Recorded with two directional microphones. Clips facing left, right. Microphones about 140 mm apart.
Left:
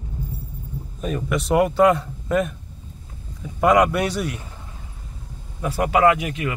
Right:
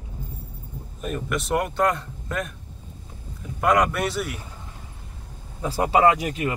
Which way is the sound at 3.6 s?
Centre (ahead or behind).